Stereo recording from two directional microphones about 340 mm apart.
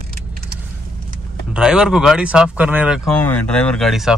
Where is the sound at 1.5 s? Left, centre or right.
Centre.